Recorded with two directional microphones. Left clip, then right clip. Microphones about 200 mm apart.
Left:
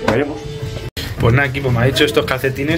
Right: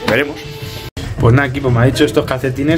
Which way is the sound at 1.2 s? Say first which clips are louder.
Right 2 dB; 35° right (ahead or behind).